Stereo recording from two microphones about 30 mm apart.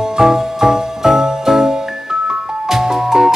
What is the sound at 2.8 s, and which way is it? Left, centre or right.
Music, right.